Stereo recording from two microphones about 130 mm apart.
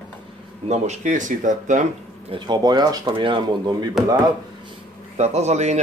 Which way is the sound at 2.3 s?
35° right (ahead or behind).